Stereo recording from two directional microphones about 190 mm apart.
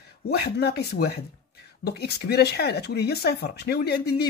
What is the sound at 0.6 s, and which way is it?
Speech, 60° left (ahead or behind).